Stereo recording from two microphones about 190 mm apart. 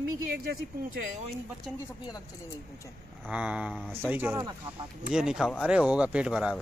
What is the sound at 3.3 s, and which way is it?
Speech, 5° right (ahead or behind).